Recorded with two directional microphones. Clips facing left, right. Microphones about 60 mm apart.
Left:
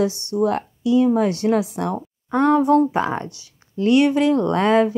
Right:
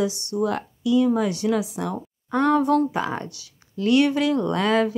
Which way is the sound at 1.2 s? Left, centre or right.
Left.